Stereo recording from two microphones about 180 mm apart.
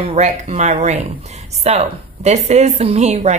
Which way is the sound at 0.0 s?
40° right (ahead or behind).